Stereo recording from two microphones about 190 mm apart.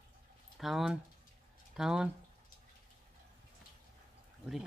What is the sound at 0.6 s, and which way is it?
Speech, centre (ahead or behind).